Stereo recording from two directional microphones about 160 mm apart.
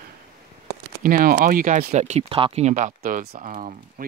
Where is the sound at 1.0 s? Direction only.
60° right (ahead or behind).